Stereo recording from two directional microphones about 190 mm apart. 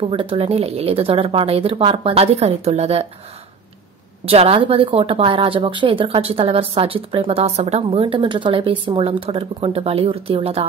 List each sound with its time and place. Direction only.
0.1 s speech: 30° right (ahead or behind)
4.3 s a woman's voice: 30° right (ahead or behind)